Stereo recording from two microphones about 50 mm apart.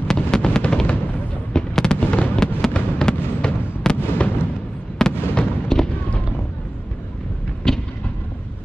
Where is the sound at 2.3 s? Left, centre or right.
Centre.